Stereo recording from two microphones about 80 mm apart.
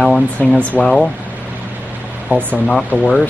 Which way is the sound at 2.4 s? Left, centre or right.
Left.